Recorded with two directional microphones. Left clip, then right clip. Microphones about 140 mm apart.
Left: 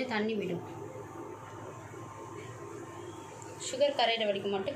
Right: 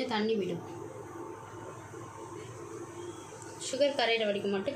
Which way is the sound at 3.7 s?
80° right.